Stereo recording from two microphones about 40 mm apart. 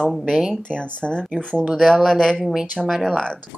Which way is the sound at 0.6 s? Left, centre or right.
Left.